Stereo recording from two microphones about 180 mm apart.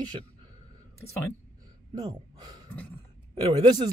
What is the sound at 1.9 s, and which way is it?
Speech, 25° right (ahead or behind).